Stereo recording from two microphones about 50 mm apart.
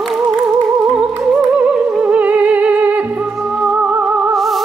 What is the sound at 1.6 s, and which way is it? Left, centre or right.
Music, right.